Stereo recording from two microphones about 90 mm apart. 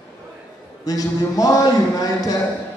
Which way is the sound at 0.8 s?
40° left (ahead or behind).